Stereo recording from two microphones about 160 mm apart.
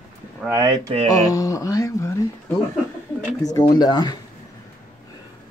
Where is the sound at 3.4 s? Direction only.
25° left (ahead or behind).